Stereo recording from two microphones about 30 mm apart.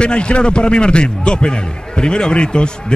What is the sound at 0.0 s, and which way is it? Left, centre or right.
A man's voice, left.